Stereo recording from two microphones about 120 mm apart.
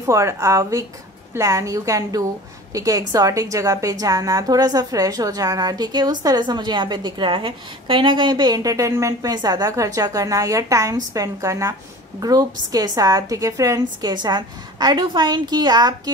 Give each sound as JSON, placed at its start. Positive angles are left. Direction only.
{"t": 0.0, "sound": "a woman's voice", "side_deg": -25}